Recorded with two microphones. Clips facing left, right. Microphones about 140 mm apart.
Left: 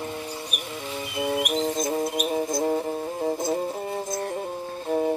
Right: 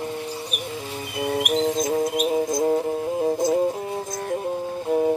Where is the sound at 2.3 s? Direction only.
15° right (ahead or behind).